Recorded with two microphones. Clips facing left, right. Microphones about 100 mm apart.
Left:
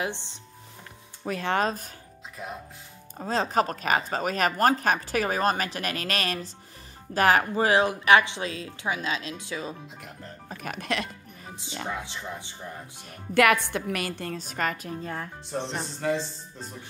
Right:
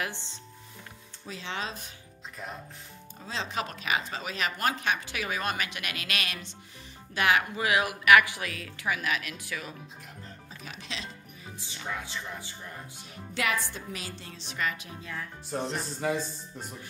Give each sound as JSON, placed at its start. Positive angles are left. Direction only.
{"t": 0.0, "sound": "speech", "side_deg": 20}
{"t": 1.2, "sound": "speech", "side_deg": 55}
{"t": 2.4, "sound": "speech", "side_deg": 5}
{"t": 3.2, "sound": "speech", "side_deg": 45}
{"t": 10.5, "sound": "music", "side_deg": 55}
{"t": 11.9, "sound": "speech", "side_deg": 20}
{"t": 13.1, "sound": "a woman's voice", "side_deg": 60}
{"t": 15.5, "sound": "speech", "side_deg": 0}
{"t": 16.0, "sound": "speech", "side_deg": -10}